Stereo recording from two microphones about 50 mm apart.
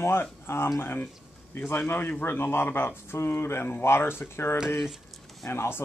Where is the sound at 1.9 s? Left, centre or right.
Left.